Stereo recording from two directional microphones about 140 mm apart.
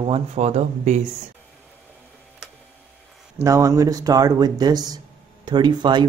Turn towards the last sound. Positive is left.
turn(degrees=-35)  # may be behind; listen again after turning